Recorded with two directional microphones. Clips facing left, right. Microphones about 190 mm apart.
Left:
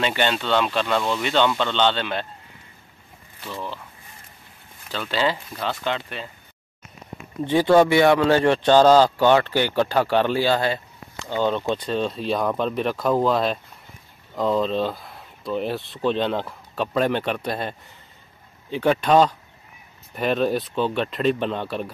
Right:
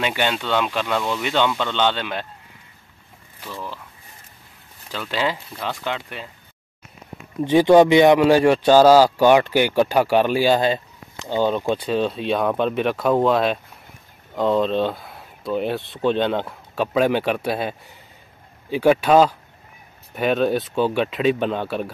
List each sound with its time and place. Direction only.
0.0 s speech: 10° right (ahead or behind)
3.4 s speech: 20° left (ahead or behind)
5.1 s speech: 10° right (ahead or behind)
7.4 s speech: 15° right (ahead or behind)